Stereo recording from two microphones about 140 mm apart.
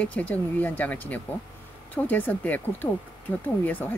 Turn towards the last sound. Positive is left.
turn(degrees=15)  # may be behind; listen again after turning